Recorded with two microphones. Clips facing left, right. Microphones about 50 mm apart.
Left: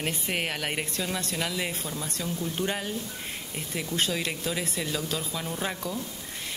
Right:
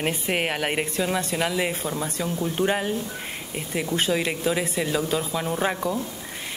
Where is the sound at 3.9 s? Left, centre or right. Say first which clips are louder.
Right 5 dB; centre.